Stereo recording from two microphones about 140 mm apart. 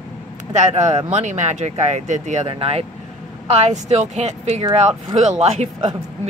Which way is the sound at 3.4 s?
55° right (ahead or behind).